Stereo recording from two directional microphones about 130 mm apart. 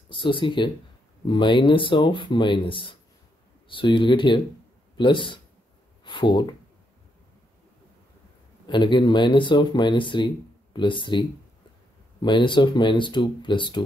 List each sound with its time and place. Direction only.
0.1 s speech: 40° left (ahead or behind)
8.6 s speech: 35° left (ahead or behind)